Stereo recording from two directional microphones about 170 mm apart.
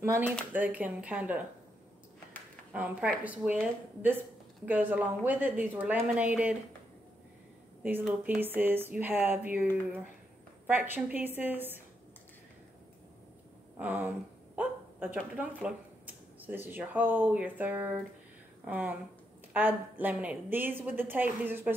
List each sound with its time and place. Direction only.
0.0 s a woman's voice: 15° right (ahead or behind)
2.7 s a woman's voice: 10° right (ahead or behind)
4.6 s a woman's voice: 10° right (ahead or behind)
8.0 s a woman's voice: 5° right (ahead or behind)
10.7 s a woman's voice: 10° right (ahead or behind)
13.7 s a woman's voice: 10° right (ahead or behind)